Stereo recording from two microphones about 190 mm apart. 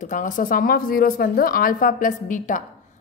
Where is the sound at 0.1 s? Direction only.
45° left (ahead or behind).